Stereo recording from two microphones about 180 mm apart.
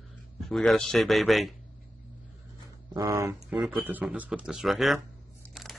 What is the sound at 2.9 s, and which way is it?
Speech, 15° right (ahead or behind).